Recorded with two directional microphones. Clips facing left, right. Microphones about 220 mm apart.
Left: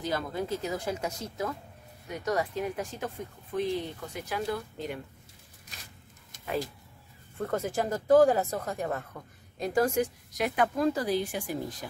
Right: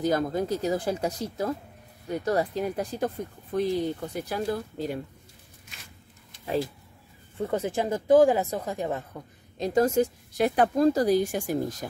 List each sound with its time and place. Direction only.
0.0 s a woman's voice: 45° right (ahead or behind)
7.3 s a woman's voice: 15° right (ahead or behind); by 11.9 s 45° right (ahead or behind)